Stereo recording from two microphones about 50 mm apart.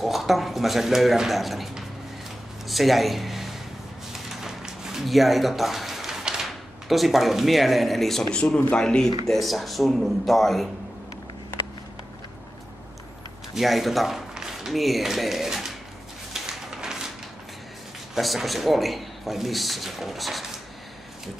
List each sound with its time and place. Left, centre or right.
0.0 s speech: centre
4.1 s a sound: centre
8.3 s speech: left
8.7 s speech: centre
13.6 s speech: centre
16.3 s a sound: centre
18.1 s speech: centre